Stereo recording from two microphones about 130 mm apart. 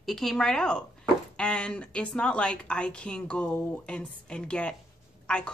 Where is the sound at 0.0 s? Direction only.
5° left (ahead or behind).